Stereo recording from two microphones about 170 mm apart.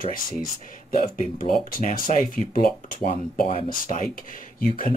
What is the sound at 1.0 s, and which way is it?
Speech, 55° left (ahead or behind).